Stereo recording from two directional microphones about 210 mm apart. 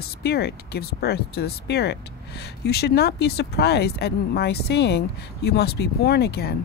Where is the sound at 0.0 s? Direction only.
50° left (ahead or behind).